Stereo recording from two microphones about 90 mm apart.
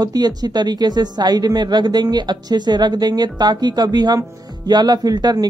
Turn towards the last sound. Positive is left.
turn(degrees=-50)  # may be behind; listen again after turning